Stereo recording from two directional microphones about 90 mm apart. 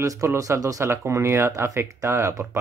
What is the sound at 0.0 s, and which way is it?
Speech, 35° right (ahead or behind).